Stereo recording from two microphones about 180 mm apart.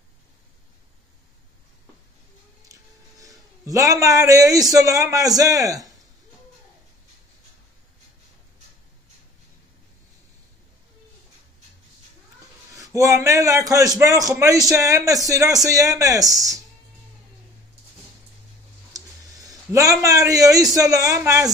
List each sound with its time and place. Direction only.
2.7 s a man's voice: 20° right (ahead or behind)
12.7 s a man's voice: 20° right (ahead or behind)
18.9 s a man's voice: 20° right (ahead or behind)